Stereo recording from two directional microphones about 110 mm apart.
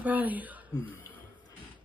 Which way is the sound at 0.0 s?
15° right (ahead or behind).